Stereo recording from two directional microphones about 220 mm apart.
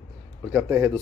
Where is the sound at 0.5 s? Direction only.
10° right (ahead or behind).